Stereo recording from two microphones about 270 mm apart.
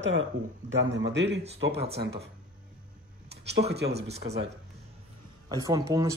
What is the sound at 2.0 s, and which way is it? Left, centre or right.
Speech, right.